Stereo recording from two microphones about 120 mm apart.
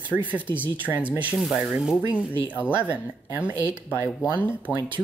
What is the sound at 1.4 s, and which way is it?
Speech, 5° right (ahead or behind).